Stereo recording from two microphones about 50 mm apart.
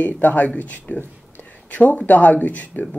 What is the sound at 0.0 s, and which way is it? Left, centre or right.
Speech, left.